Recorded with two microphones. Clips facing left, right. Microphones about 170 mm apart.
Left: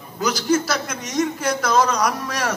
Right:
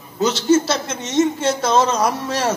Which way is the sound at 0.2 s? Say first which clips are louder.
Right 4 dB; 25° right (ahead or behind).